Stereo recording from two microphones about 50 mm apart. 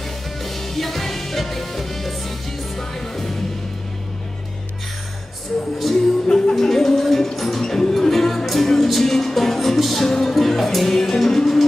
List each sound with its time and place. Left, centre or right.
0.4 s music: centre
5.8 s music: centre
6.2 s music: centre
6.5 s music: centre